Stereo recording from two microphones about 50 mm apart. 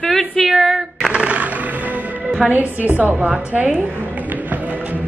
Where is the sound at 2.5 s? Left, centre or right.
Right.